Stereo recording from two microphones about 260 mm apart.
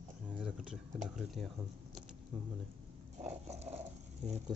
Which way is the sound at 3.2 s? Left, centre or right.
Right.